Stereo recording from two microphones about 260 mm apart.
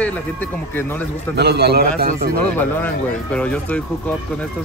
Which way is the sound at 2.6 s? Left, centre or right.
Centre.